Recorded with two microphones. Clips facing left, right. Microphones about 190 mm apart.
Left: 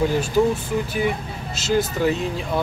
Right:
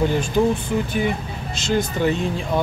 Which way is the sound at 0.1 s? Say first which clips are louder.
Even; 5° left (ahead or behind).